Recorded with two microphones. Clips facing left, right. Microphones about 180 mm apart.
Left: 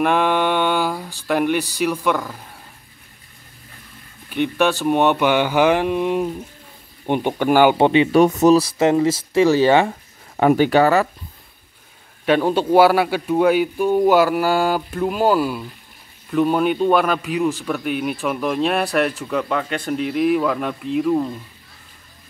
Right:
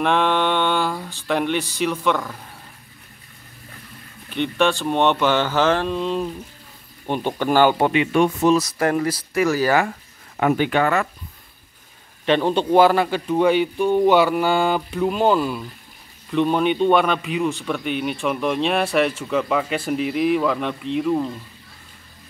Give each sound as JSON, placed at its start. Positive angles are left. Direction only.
{"t": 0.0, "sound": "speech", "side_deg": 5}
{"t": 4.3, "sound": "speech", "side_deg": 5}
{"t": 7.7, "sound": "speech", "side_deg": 30}
{"t": 12.3, "sound": "a man's voice", "side_deg": 5}